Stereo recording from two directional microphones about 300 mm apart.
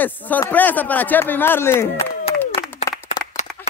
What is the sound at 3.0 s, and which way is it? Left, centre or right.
Clapping, left.